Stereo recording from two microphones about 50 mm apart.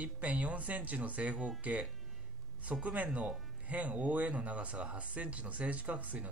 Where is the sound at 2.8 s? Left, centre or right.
Right.